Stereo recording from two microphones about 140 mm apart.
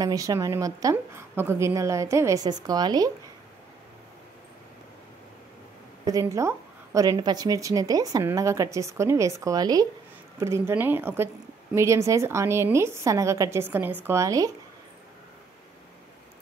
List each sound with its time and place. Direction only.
0.0 s a woman's voice: 25° right (ahead or behind)
6.0 s a woman's voice: 25° right (ahead or behind)